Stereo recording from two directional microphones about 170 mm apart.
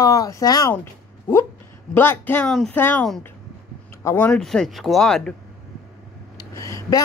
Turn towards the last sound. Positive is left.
turn(degrees=20)  # may be behind; listen again after turning